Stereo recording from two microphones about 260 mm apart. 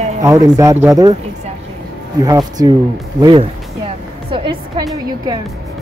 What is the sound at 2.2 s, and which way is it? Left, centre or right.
A man's voice, centre.